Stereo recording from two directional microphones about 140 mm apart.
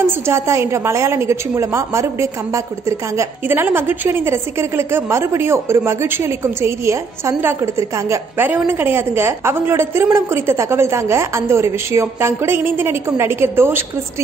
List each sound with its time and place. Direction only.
0.0 s a woman's voice: 20° right (ahead or behind)